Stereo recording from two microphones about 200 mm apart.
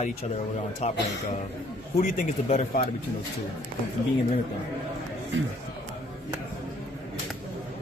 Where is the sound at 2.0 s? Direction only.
30° left (ahead or behind).